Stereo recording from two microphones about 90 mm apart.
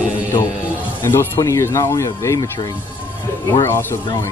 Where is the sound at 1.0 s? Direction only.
25° left (ahead or behind).